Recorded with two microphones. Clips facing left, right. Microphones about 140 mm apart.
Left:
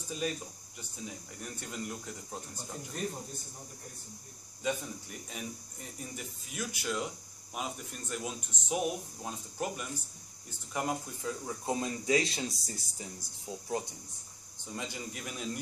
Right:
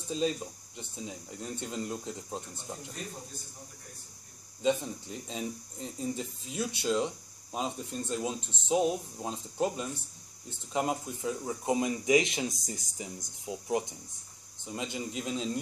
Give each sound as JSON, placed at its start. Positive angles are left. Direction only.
{"t": 0.1, "sound": "speech", "side_deg": -25}
{"t": 4.6, "sound": "speech", "side_deg": -25}